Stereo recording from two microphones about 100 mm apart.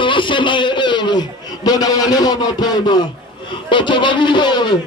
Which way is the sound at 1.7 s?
40° left (ahead or behind).